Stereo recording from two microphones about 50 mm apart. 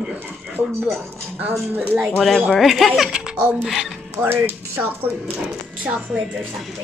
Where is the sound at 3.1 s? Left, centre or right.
Centre.